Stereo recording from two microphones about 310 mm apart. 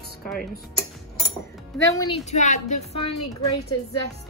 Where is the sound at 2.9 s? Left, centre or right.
Left.